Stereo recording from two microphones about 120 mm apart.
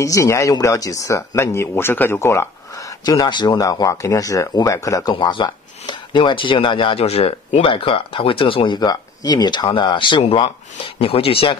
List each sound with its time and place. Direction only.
0.0 s speech: 25° left (ahead or behind)
3.1 s speech: 35° left (ahead or behind)
5.2 s speech: 40° left (ahead or behind)
8.7 s speech: 35° left (ahead or behind); by 11.5 s 50° left (ahead or behind)